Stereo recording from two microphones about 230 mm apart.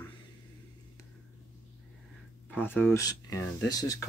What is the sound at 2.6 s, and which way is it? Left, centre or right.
Speech, centre.